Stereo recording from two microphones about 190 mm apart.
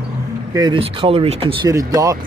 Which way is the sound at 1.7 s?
15° right (ahead or behind).